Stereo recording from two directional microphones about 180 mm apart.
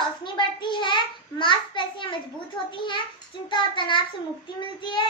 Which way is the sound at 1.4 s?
25° left (ahead or behind).